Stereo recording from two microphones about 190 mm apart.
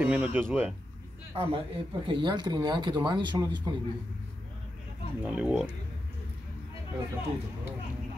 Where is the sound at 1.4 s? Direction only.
30° right (ahead or behind).